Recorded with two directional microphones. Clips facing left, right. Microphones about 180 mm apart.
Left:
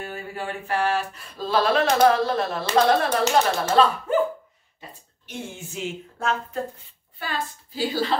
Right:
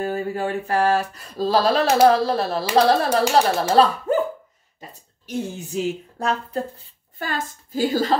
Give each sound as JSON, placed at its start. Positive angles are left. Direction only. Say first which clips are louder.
{"t": 0.0, "sound": "mantra", "louder": "right 8 dB", "side_deg": -40}
{"t": 4.7, "sound": "a woman's voice", "louder": "right 2 dB", "side_deg": -40}